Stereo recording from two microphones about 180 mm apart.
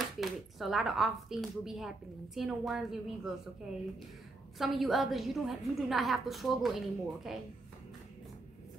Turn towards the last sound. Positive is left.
turn(degrees=0)  # may be behind; listen again after turning